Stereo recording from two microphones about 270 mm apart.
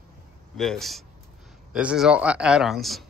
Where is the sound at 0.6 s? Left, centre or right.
Centre.